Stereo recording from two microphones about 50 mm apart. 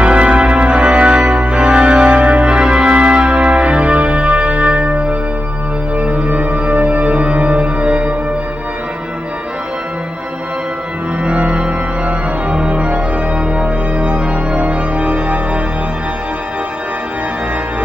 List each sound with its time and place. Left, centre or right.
0.0 s organ: right
5.9 s music: right
11.2 s music: right
13.6 s organ: right